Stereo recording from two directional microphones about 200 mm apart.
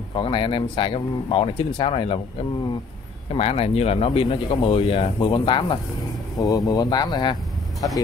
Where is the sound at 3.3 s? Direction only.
30° left (ahead or behind).